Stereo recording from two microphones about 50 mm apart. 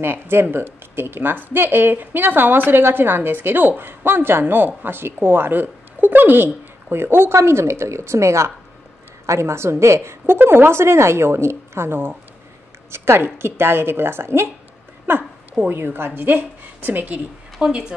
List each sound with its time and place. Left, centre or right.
0.0 s speech: right
7.3 s a woman's voice: right
12.9 s a woman's voice: right
17.6 s speech: centre